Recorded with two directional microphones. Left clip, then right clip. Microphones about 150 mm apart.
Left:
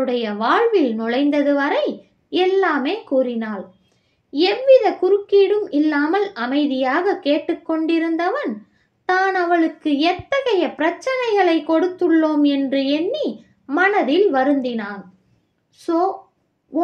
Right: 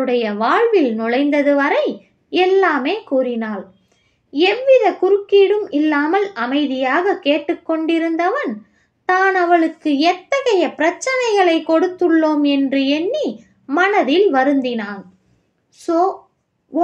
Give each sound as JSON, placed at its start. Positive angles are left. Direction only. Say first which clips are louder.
{"t": 0.0, "sound": "speech", "louder": "right 3 dB", "side_deg": -40}
{"t": 12.4, "sound": "speech", "louder": "right 2 dB", "side_deg": -40}
{"t": 14.7, "sound": "speech", "louder": "right 3 dB", "side_deg": -50}
{"t": 15.8, "sound": "a woman's voice", "louder": "right 3 dB", "side_deg": -60}